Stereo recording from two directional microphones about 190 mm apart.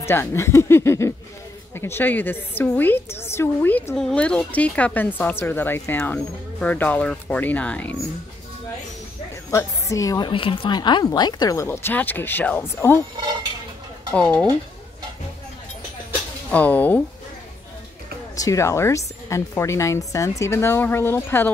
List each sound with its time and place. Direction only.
0.0 s a woman's voice: 10° left (ahead or behind)
9.5 s a woman's voice: 15° left (ahead or behind)
14.1 s speech: 5° left (ahead or behind)
16.4 s a woman's voice: 10° left (ahead or behind)
18.3 s a woman's voice: 15° left (ahead or behind)